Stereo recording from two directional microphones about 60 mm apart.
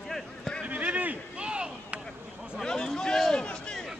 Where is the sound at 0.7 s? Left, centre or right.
Right.